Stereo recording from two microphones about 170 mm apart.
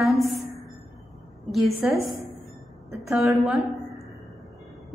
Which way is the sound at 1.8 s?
5° right (ahead or behind).